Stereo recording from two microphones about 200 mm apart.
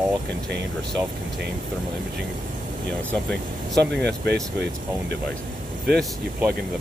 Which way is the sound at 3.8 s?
55° right (ahead or behind).